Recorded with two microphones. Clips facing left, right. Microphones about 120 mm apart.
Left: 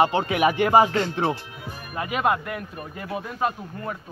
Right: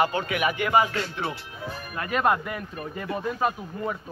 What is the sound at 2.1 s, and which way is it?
Speech, 5° left (ahead or behind).